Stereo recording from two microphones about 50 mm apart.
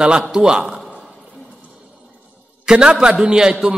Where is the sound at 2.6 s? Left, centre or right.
Centre.